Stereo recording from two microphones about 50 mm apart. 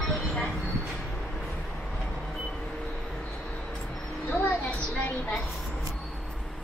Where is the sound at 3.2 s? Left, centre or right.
Left.